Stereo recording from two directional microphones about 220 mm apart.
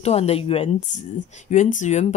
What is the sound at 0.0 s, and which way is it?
A woman's voice, 30° left (ahead or behind).